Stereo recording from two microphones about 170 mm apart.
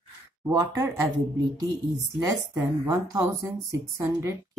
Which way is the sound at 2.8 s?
15° right (ahead or behind).